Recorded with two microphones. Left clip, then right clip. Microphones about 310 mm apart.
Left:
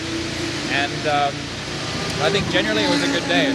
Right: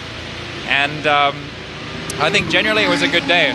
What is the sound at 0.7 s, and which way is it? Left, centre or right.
Speech, right.